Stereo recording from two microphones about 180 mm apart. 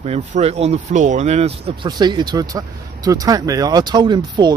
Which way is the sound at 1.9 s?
25° right (ahead or behind).